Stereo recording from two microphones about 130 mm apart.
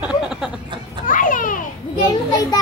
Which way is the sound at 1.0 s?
90° left.